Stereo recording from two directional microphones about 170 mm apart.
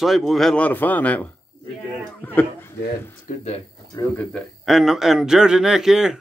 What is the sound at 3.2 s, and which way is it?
Speech, 40° left (ahead or behind).